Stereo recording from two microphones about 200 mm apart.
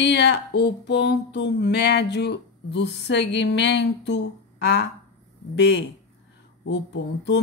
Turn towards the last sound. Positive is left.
turn(degrees=60)  # may be behind; listen again after turning